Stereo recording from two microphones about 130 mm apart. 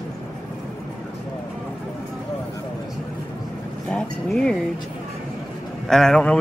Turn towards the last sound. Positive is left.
turn(degrees=5)  # may be behind; listen again after turning